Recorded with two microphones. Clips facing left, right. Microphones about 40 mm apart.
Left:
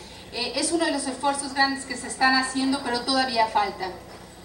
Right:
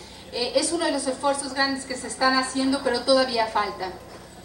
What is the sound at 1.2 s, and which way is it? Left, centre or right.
A woman's voice, left.